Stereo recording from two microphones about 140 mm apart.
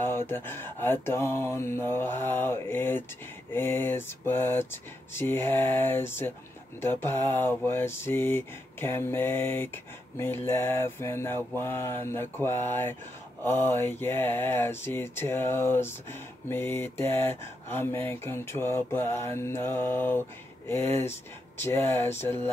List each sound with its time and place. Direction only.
0.3 s speech: 15° left (ahead or behind)